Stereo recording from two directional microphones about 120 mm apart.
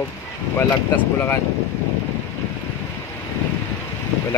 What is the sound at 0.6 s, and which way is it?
Speech, 20° left (ahead or behind).